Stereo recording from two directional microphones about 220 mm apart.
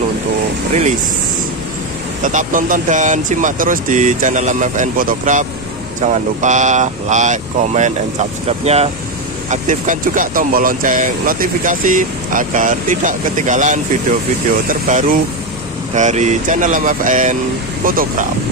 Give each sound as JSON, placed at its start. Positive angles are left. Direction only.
{"t": 2.2, "sound": "speech", "side_deg": -35}